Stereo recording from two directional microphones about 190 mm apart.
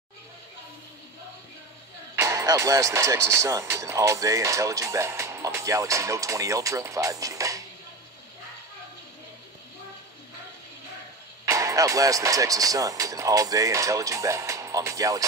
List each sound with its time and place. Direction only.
2.1 s speech: 15° right (ahead or behind)
11.4 s speech: 15° right (ahead or behind)